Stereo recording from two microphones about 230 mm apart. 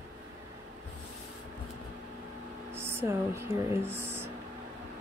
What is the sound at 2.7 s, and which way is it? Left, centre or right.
Speech, centre.